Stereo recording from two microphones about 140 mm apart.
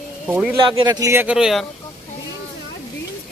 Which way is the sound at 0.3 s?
10° right (ahead or behind).